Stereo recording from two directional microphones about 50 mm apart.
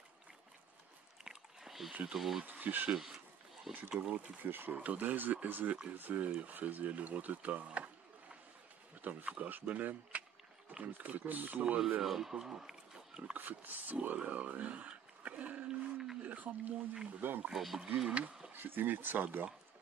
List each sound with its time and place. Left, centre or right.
1.2 s a sound: centre
2.1 s speech: centre
2.4 s speech: right
3.9 s speech: centre
4.4 s speech: right
12.0 s speech: centre
13.3 s speech: right
15.7 s a sound: centre
16.2 s a sound: right
17.2 s speech: right
17.5 s speech: centre
17.9 s speech: centre
18.5 s speech: right